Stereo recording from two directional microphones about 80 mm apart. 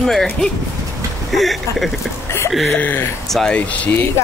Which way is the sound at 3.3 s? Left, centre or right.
Centre.